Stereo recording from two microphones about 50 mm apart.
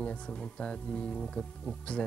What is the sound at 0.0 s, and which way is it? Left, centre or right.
Speech, left.